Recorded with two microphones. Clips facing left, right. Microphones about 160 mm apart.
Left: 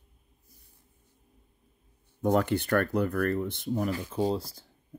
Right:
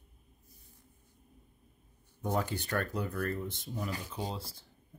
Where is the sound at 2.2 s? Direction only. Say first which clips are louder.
Left 8 dB; 65° left (ahead or behind); by 4.6 s 35° left (ahead or behind).